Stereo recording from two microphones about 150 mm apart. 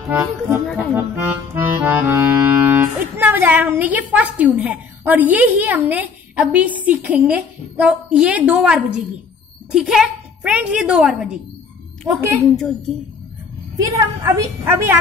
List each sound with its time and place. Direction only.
0.7 s a woman's voice: 5° left (ahead or behind)
0.9 s accordion: 15° right (ahead or behind)
9.7 s a woman's voice: 5° right (ahead or behind)
12.1 s a woman's voice: 15° right (ahead or behind)
12.5 s a woman's voice: centre (ahead or behind)
13.7 s a woman's voice: 25° right (ahead or behind)